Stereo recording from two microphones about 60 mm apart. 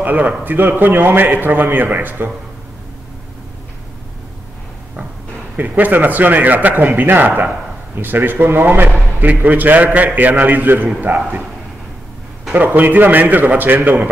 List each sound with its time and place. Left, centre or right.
0.0 s a man's voice: right
5.6 s a man's voice: right
12.5 s a man's voice: right